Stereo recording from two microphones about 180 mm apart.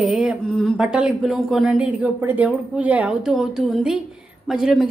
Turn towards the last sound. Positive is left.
turn(degrees=-5)  # may be behind; listen again after turning